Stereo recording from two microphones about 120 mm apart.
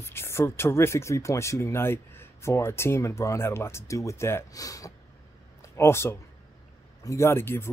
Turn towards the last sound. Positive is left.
turn(degrees=20)  # may be behind; listen again after turning